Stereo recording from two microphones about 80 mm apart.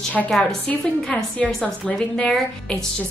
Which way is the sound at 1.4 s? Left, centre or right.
Centre.